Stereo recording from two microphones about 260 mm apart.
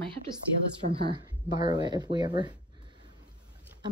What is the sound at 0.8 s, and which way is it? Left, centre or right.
Speech, right.